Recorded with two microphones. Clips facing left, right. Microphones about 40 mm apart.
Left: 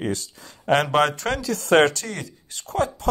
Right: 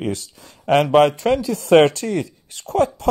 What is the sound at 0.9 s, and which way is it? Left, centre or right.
Speech, right.